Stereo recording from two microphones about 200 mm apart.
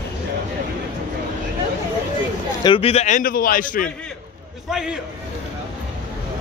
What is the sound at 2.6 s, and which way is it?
A man's voice, 25° left (ahead or behind).